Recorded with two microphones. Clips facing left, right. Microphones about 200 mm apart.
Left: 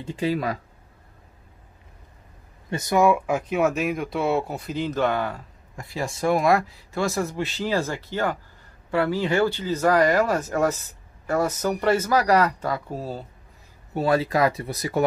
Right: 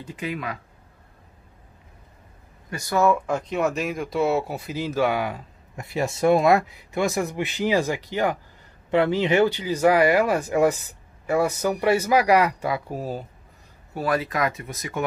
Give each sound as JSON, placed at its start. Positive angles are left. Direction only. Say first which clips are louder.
{"t": 0.0, "sound": "speech", "louder": "left 6 dB", "side_deg": 30}
{"t": 2.7, "sound": "speech", "louder": "left 2 dB", "side_deg": 20}
{"t": 13.9, "sound": "speech", "louder": "left 3 dB", "side_deg": 25}